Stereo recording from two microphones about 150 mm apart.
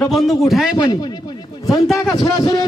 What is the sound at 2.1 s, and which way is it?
Speech, 25° left (ahead or behind).